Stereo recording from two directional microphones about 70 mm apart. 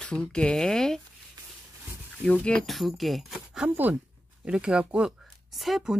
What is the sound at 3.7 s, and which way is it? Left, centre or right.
Speech, right.